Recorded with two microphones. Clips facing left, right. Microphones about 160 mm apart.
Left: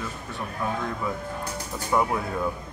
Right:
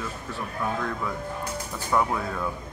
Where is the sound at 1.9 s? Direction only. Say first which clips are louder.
Left 1 dB; 15° left (ahead or behind).